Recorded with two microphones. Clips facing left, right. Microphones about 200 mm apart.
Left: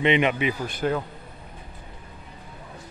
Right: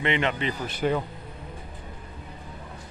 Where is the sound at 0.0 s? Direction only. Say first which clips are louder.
Left 5 dB; 15° left (ahead or behind).